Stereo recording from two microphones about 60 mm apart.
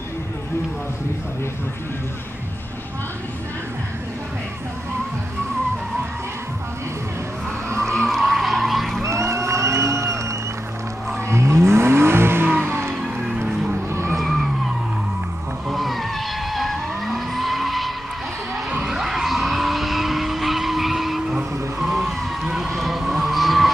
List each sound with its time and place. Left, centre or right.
7.9 s vehicle: centre
9.0 s music: right
11.2 s vehicle: right
12.6 s music: right
13.0 s music: centre
13.4 s music: right
14.1 s vehicle: centre
15.7 s vehicle: centre
18.9 s skidding: centre
21.4 s vehicle: centre